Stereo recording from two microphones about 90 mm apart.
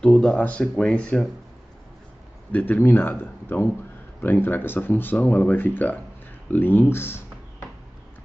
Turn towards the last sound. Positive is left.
turn(degrees=25)  # may be behind; listen again after turning